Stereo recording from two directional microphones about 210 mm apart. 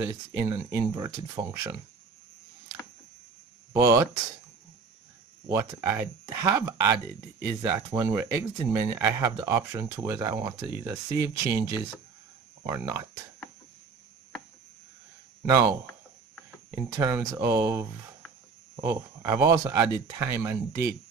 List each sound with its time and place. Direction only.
0.0 s speech: 15° right (ahead or behind)
3.7 s speech: 15° right (ahead or behind)
5.5 s speech: 15° right (ahead or behind)
8.0 s speech: 20° right (ahead or behind)
15.4 s speech: 15° right (ahead or behind)
17.1 s speech: 20° right (ahead or behind)
19.3 s speech: 15° right (ahead or behind)